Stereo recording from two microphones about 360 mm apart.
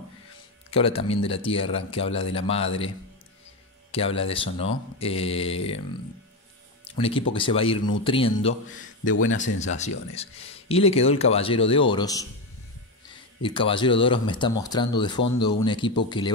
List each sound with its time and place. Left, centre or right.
0.7 s speech: centre
3.9 s speech: centre
6.8 s music: centre
7.3 s speech: centre
9.0 s a man's voice: left
9.8 s speech: centre
13.4 s speech: centre